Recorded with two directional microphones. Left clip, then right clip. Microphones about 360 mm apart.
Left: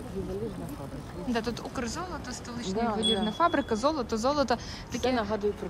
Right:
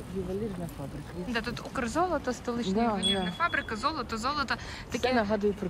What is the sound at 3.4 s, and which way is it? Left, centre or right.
Speech, centre.